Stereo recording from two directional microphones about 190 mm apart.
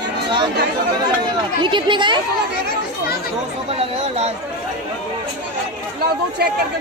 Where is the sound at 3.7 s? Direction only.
30° right (ahead or behind).